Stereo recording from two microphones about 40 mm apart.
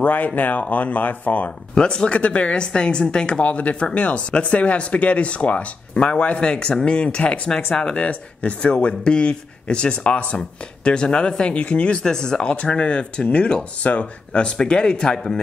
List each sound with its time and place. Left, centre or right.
0.0 s speech: left
1.8 s speech: left
12.0 s speech: centre
12.4 s speech: left